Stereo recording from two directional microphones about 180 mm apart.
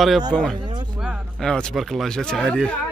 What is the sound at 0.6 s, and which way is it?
Speech, 25° right (ahead or behind).